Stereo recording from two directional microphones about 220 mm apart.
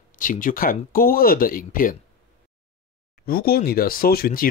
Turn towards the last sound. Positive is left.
turn(degrees=40)  # may be behind; listen again after turning